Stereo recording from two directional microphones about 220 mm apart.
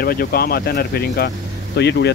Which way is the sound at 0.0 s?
45° left (ahead or behind).